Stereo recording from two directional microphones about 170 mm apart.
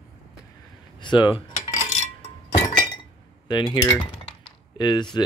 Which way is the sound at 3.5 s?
25° left (ahead or behind).